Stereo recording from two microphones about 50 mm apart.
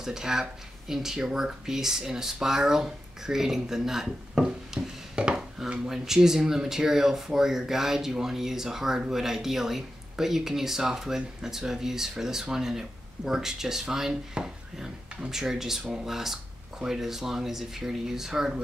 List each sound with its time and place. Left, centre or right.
0.0 s speech: centre